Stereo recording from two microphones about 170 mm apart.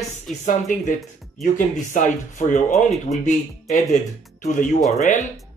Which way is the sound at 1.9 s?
45° left (ahead or behind).